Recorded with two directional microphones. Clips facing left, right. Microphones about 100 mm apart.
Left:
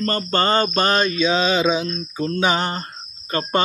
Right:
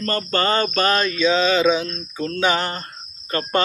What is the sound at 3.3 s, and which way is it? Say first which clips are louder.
Cricket: even; 20° left (ahead or behind).